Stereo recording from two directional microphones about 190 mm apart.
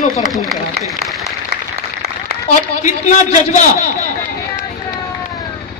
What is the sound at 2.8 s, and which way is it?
A man's voice, 40° left (ahead or behind).